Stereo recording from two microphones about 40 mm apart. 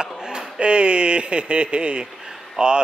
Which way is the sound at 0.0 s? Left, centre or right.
Right.